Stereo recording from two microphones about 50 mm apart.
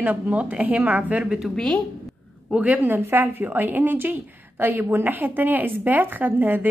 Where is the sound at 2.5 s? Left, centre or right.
Right.